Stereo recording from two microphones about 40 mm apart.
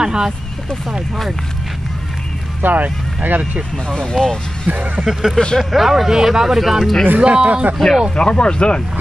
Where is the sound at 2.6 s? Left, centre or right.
Right.